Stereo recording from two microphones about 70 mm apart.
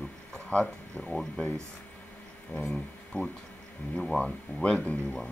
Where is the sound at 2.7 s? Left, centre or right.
Centre.